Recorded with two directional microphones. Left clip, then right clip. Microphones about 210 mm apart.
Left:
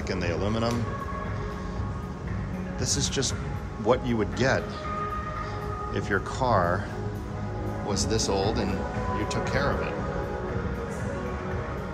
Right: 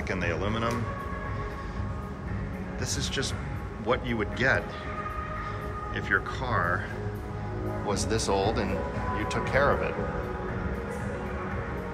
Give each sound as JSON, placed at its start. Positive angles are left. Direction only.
{"t": 0.1, "sound": "speech", "side_deg": 10}
{"t": 2.9, "sound": "speech", "side_deg": 15}
{"t": 5.9, "sound": "speech", "side_deg": 20}
{"t": 7.9, "sound": "speech", "side_deg": 10}